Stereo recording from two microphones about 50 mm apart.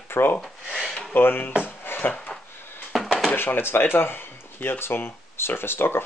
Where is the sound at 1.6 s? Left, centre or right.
Left.